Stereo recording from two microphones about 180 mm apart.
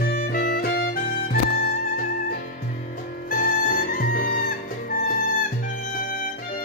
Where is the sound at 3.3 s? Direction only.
50° left (ahead or behind).